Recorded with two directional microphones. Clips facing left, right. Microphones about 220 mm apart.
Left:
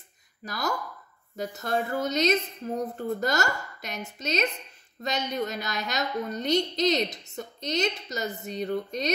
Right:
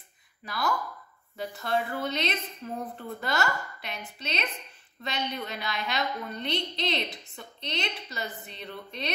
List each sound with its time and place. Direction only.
0.5 s a woman's voice: 45° left (ahead or behind)